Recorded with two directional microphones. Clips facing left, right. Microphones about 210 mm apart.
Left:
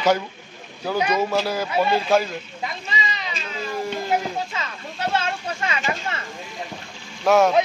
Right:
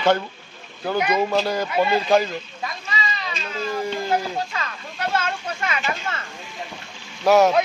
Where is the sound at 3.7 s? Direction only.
Centre (ahead or behind).